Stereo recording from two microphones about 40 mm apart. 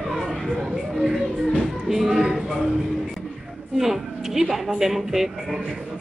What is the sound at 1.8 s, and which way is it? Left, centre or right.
Music, centre.